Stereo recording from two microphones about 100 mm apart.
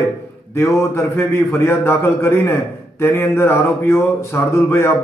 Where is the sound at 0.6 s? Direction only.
30° left (ahead or behind).